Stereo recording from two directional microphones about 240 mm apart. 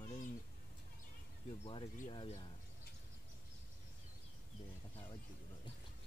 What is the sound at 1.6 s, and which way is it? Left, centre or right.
Speech, left.